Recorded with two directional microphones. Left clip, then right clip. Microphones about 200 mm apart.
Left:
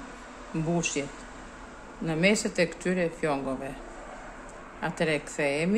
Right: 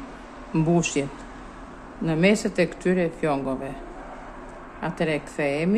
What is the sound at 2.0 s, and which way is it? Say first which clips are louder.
A man's voice: right 4 dB; 5° right (ahead or behind).